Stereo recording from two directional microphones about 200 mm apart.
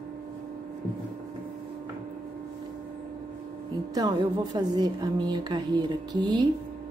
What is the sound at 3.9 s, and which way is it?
Speech, 20° right (ahead or behind).